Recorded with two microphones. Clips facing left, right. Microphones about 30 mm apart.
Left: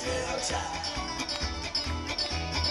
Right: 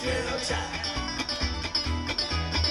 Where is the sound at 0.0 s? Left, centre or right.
Right.